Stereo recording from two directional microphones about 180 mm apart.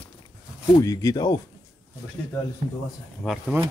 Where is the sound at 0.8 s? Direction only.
20° left (ahead or behind).